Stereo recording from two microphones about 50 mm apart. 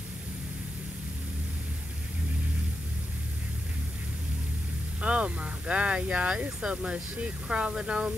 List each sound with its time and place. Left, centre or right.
5.0 s speech: right